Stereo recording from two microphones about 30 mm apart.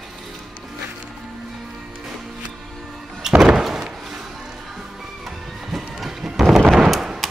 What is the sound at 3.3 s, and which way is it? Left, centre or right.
Slam, right.